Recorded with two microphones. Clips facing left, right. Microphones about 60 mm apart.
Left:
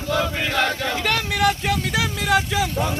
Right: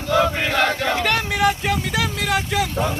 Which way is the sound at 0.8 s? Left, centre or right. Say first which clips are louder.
Right 3 dB; right.